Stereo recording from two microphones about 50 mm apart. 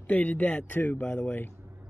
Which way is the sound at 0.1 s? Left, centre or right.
Left.